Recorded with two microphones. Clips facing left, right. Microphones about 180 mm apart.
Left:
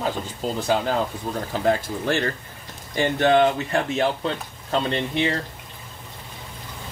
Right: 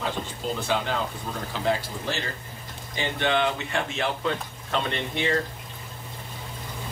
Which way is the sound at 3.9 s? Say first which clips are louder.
Left 4 dB; 35° left (ahead or behind).